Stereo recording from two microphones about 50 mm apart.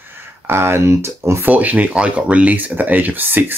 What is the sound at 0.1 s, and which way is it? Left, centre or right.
Speech, right.